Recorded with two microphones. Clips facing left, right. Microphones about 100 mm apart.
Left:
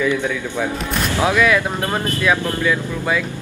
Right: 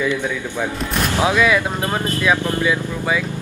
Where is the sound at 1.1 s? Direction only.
15° right (ahead or behind).